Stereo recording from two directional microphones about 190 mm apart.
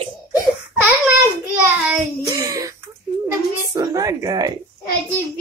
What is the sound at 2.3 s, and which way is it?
A woman's voice, 15° right (ahead or behind).